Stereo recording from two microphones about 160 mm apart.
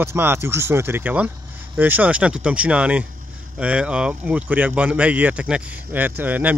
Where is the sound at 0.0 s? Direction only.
15° right (ahead or behind).